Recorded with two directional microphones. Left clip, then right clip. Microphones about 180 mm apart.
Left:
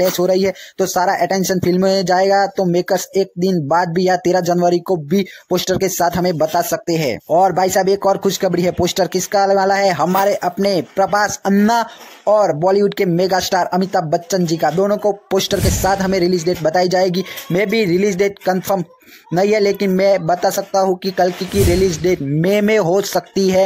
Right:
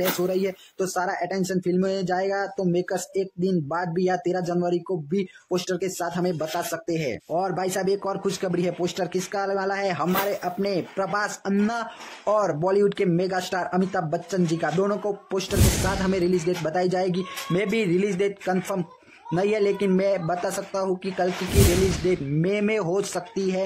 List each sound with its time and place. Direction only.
0.2 s speech: 40° left (ahead or behind)
12.3 s speech: 30° left (ahead or behind); by 23.6 s 45° left (ahead or behind)